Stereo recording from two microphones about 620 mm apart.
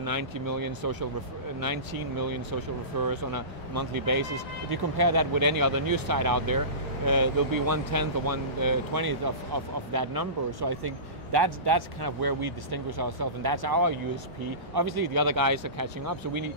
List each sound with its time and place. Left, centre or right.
0.0 s speech: right